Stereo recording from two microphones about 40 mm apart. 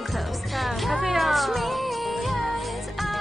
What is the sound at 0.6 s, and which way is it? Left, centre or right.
Music, centre.